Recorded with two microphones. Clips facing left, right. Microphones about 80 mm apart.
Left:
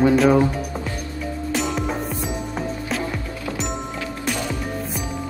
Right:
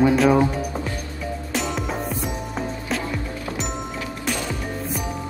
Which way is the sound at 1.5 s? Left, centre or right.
Centre.